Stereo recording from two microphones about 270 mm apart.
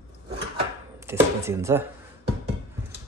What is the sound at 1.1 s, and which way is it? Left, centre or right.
Speech, centre.